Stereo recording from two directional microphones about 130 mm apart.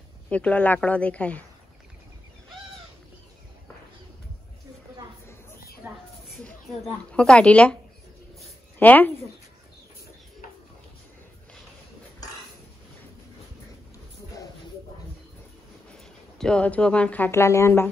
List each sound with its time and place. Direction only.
0.3 s a woman's voice: 10° left (ahead or behind)
5.9 s a sound: 15° right (ahead or behind)
6.3 s speech: 5° left (ahead or behind)
8.7 s a woman's voice: 15° left (ahead or behind)
15.9 s a sound: 5° left (ahead or behind)
17.3 s speech: 20° left (ahead or behind)